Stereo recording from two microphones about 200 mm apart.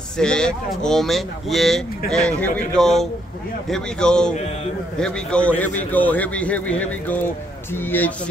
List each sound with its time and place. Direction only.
0.2 s a man's voice: 5° left (ahead or behind)